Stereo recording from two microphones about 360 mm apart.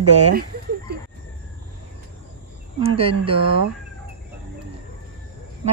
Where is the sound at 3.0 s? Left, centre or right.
Centre.